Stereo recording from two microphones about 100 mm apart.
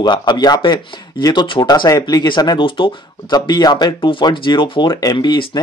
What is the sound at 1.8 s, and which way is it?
Speech, 35° left (ahead or behind).